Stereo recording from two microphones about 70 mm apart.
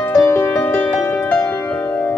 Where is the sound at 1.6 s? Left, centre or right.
Left.